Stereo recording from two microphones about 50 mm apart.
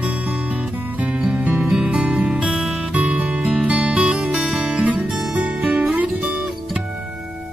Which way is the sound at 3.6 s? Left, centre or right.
Right.